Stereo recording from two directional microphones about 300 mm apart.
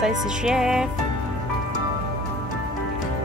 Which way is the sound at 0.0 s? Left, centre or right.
Centre.